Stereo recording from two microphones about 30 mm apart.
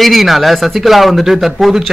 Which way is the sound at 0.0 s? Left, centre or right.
Centre.